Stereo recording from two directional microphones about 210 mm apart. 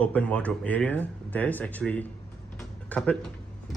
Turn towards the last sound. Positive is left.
turn(degrees=5)  # may be behind; listen again after turning